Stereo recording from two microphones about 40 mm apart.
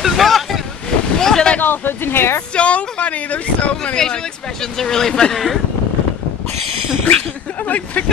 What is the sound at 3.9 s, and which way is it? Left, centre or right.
Speech, centre.